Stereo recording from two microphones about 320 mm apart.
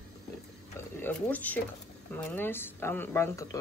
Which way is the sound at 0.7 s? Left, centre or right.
Centre.